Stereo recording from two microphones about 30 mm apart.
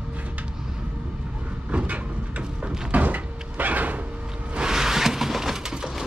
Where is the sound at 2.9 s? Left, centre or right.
Right.